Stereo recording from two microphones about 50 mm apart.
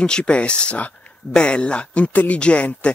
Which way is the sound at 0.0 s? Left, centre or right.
Centre.